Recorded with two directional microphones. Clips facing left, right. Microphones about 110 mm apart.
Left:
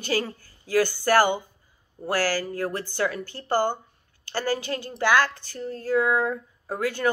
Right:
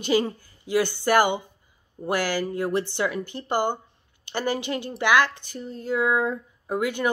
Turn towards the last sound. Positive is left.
turn(degrees=-15)  # may be behind; listen again after turning